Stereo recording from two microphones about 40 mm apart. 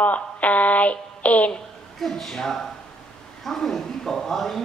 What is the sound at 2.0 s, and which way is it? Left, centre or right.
Speech, centre.